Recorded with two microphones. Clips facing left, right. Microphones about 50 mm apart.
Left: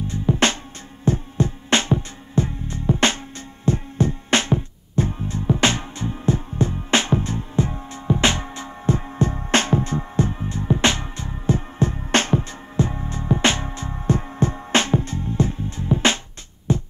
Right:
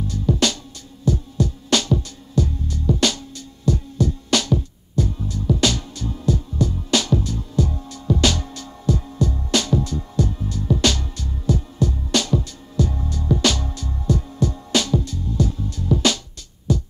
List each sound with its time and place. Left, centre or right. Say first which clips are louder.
0.0 s music: left 1 dB; left